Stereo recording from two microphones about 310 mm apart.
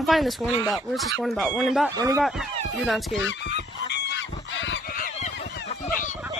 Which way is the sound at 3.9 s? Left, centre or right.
Left.